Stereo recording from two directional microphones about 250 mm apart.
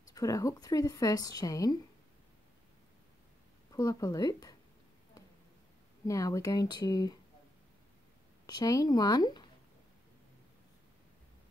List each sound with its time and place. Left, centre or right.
0.1 s a woman's voice: centre
3.7 s a woman's voice: centre
6.0 s a woman's voice: centre
8.5 s a woman's voice: centre